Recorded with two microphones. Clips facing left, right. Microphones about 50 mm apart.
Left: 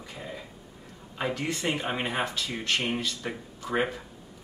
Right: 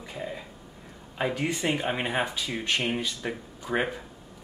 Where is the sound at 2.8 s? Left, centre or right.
Centre.